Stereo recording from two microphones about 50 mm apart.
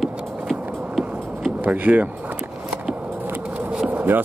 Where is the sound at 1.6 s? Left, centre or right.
Right.